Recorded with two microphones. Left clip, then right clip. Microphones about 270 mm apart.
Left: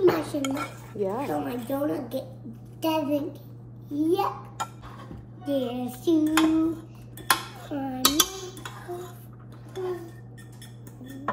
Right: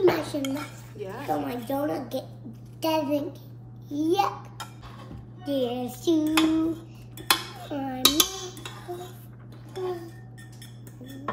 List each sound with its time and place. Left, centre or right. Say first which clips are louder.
0.0 s dishes: even; centre
0.4 s cutlery: left 2 dB; left
1.0 s a woman's voice: left 1 dB; centre
5.0 s child singing: left 1 dB; centre
9.8 s dishes: even; centre